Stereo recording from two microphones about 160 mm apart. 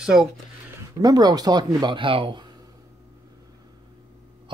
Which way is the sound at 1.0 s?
25° right (ahead or behind).